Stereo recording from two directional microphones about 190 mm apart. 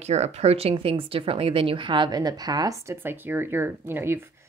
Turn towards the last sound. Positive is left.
turn(degrees=-10)  # may be behind; listen again after turning